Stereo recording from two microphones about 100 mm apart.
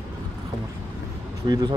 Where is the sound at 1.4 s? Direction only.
45° right (ahead or behind).